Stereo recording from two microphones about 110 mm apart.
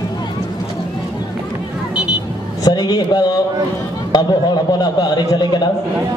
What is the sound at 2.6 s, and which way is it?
Speech, 35° left (ahead or behind).